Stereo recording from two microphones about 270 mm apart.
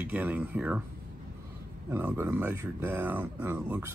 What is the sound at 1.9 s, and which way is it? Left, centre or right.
Speech, centre.